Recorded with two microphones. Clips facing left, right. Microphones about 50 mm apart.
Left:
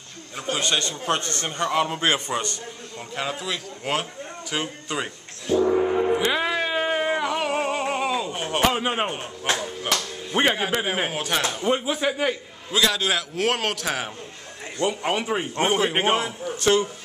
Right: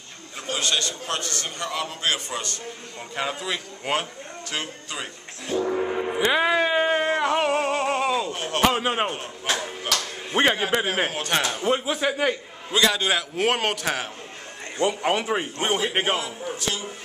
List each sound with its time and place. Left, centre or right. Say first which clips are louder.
0.5 s a man's voice: left 1 dB; left
3.2 s a man's voice: right 1 dB; centre
4.5 s speech: left 3 dB; centre
5.5 s gong: left 5 dB; centre
7.1 s music: right 2 dB; centre
8.3 s a sound: left 1 dB; centre
8.6 s a man's voice: right 2 dB; centre
15.9 s speech: left 2 dB; centre
16.5 s speech: left 13 dB; left